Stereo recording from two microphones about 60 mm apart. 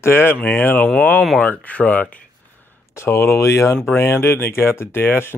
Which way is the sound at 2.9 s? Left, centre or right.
Left.